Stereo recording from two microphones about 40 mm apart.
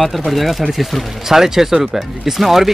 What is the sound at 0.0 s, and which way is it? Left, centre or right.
Speech, centre.